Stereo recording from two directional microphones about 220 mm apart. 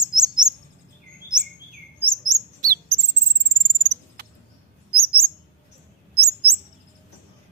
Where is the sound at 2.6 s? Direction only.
40° right (ahead or behind).